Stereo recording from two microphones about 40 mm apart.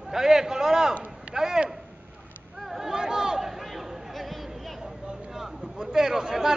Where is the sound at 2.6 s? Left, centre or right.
Centre.